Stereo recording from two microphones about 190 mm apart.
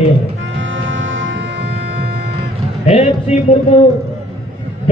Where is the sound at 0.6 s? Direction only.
90° right; by 1.8 s 70° right (ahead or behind).